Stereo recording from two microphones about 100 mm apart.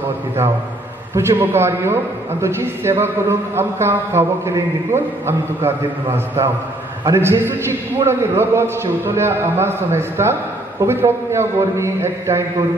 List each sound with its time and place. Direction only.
1.1 s a man's voice: 30° right (ahead or behind)